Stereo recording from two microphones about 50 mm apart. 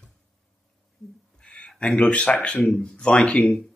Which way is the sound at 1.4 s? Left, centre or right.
Left.